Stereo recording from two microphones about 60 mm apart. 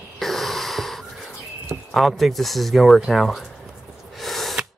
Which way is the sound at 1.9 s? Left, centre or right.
Centre.